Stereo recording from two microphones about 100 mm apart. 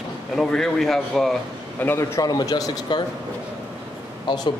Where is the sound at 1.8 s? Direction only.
25° left (ahead or behind).